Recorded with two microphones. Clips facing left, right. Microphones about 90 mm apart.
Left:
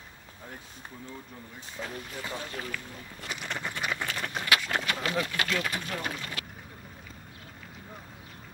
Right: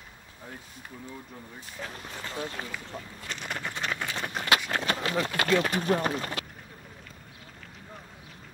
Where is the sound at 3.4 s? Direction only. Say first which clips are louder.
Right 1 dB; 5° right (ahead or behind).